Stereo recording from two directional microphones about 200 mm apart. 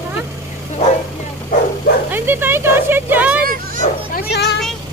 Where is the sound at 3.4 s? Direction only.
45° right (ahead or behind).